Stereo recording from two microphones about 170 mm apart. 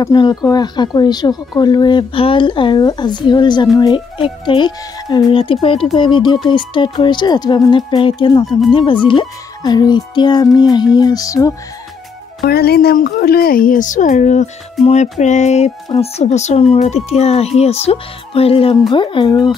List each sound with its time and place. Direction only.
0.0 s speech: 25° left (ahead or behind)
12.4 s a woman's voice: 65° left (ahead or behind); by 14.5 s 45° left (ahead or behind)
14.9 s a sound: 45° left (ahead or behind)
16.0 s speech: 40° left (ahead or behind)